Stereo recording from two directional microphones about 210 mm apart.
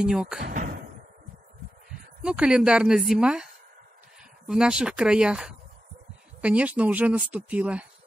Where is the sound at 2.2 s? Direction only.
5° right (ahead or behind).